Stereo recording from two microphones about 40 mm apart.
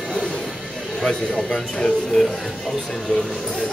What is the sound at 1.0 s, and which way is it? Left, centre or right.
Speech, centre.